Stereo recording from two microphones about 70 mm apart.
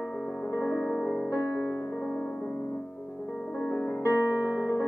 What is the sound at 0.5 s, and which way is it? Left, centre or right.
Music, left.